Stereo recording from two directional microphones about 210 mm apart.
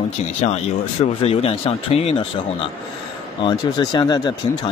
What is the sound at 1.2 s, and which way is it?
Speech, 30° left (ahead or behind).